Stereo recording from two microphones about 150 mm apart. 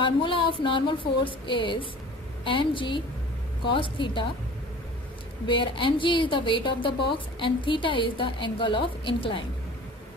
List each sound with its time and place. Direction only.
0.0 s a woman's voice: 35° left (ahead or behind)
5.5 s a woman's voice: 35° left (ahead or behind)